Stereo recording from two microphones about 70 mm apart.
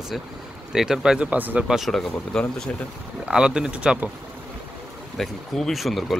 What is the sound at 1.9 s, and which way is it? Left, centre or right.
Speech, centre.